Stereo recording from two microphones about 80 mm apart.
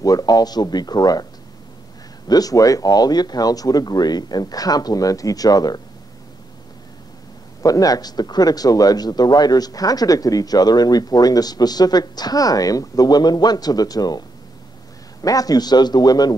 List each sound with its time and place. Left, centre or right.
0.0 s speech: left
2.2 s speech: left
7.6 s speech: left
15.2 s speech: left